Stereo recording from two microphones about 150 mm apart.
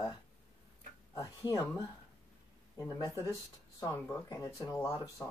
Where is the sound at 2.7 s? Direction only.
25° left (ahead or behind).